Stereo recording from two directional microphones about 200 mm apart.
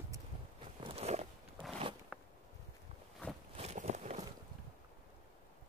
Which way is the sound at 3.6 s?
35° right (ahead or behind).